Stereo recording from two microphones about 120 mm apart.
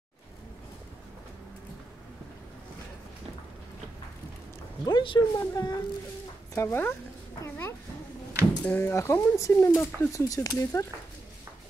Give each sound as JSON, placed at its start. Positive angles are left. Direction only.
{"t": 4.8, "sound": "speech", "side_deg": 40}
{"t": 6.5, "sound": "speech", "side_deg": 20}